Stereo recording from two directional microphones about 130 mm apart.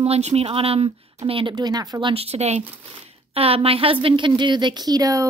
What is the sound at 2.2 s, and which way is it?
Speech, 55° right (ahead or behind).